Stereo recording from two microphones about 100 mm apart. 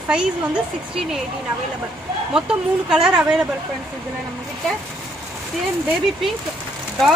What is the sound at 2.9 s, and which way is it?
Speech, 10° right (ahead or behind).